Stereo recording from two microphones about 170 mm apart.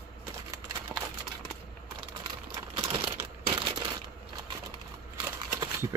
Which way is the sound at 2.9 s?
35° right (ahead or behind).